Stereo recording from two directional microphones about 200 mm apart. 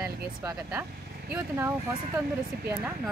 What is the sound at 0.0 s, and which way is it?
Speech, 15° right (ahead or behind).